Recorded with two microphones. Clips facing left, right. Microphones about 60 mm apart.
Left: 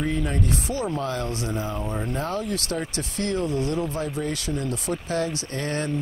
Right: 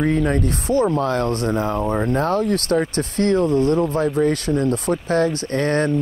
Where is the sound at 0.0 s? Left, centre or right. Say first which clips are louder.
Right 7 dB; right.